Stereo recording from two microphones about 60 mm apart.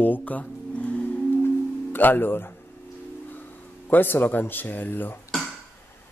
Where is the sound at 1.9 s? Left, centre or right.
Left.